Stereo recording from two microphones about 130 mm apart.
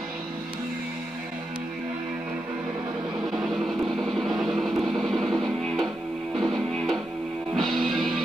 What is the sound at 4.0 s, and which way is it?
Music, centre (ahead or behind).